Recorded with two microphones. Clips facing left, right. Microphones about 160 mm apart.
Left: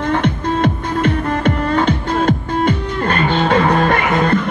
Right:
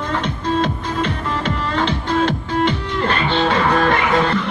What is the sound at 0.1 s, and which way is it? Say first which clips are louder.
Music: left 3 dB; 55° left (ahead or behind).